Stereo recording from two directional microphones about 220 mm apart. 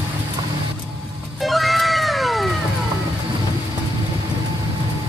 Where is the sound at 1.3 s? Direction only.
Centre (ahead or behind).